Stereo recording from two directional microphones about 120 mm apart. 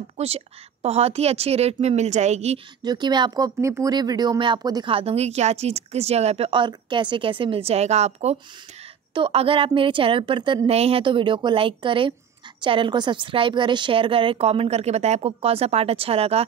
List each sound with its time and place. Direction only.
0.2 s speech: 65° right (ahead or behind)
2.8 s speech: 35° right (ahead or behind)
4.9 s speech: 60° right (ahead or behind)
9.1 s a woman's voice: 50° right (ahead or behind)
10.7 s a woman's voice: 55° right (ahead or behind)